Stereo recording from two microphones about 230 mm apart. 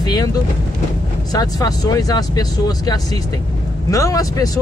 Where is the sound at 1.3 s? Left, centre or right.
Centre.